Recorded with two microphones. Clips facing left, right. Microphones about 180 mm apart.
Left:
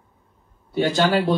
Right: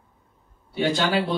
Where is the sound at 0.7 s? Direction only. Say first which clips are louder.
Left 3 dB; 45° left (ahead or behind).